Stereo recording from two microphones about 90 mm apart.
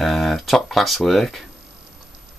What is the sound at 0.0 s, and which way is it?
Speech, centre (ahead or behind).